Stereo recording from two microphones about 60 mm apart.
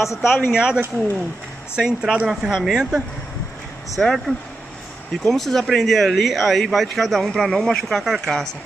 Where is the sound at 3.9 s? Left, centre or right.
Centre.